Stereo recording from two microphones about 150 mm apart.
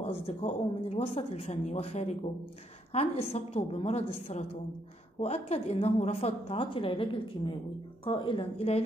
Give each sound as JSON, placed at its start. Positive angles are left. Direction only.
{"t": 0.0, "sound": "a woman's voice", "side_deg": 40}